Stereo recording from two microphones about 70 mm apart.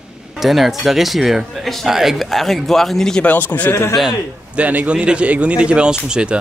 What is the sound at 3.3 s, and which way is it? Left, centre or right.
Speech, left.